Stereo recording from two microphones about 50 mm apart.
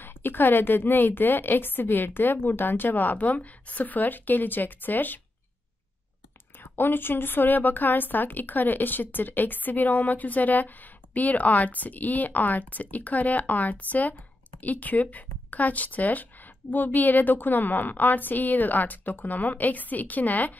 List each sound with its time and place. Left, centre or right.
0.0 s a woman's voice: left
6.6 s a woman's voice: left